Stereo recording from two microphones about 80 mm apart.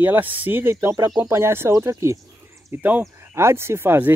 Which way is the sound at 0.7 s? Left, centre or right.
Right.